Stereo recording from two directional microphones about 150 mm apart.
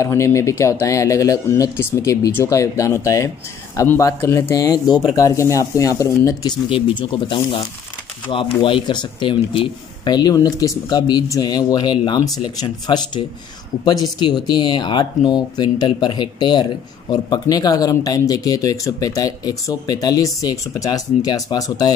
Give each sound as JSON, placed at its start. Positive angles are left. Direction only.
{"t": 0.0, "sound": "speech", "side_deg": 20}